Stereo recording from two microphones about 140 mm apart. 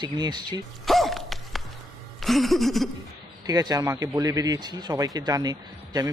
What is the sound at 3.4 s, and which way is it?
A man's voice, 25° right (ahead or behind).